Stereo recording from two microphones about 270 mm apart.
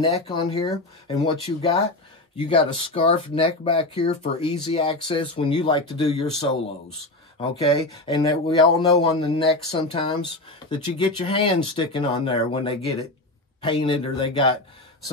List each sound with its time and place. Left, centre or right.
0.0 s speech: centre
7.7 s speech: centre